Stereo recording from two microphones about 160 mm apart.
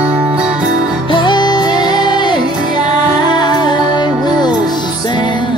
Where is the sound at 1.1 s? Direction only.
30° left (ahead or behind).